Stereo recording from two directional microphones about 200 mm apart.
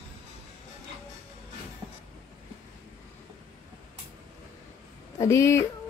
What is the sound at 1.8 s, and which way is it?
Train, 20° right (ahead or behind).